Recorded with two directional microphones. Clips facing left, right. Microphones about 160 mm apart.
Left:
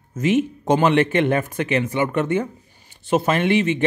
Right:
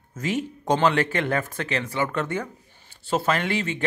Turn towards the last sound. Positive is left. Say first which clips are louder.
# left 6 dB
turn(degrees=20)  # may be behind; listen again after turning